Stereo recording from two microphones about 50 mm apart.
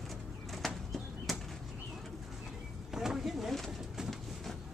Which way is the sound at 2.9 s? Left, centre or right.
Centre.